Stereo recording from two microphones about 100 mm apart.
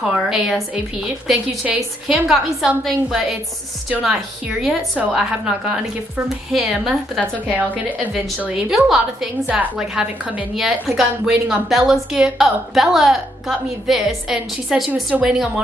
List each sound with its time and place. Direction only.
0.1 s a woman's voice: 5° right (ahead or behind)
7.5 s a woman's voice: 15° right (ahead or behind)